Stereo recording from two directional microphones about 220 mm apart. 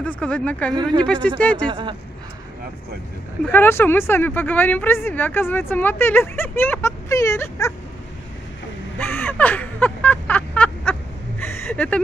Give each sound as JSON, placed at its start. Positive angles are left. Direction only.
{"t": 0.0, "sound": "speech", "side_deg": 5}
{"t": 1.7, "sound": "speech", "side_deg": -20}
{"t": 3.5, "sound": "a woman's voice", "side_deg": 10}
{"t": 8.9, "sound": "a sound", "side_deg": 10}